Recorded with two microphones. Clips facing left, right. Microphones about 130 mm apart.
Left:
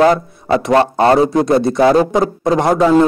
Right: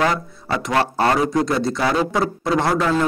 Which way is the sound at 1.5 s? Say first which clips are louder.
Left 8 dB; 55° left (ahead or behind).